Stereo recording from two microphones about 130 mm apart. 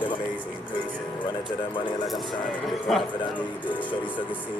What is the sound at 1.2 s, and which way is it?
Speech, 35° left (ahead or behind).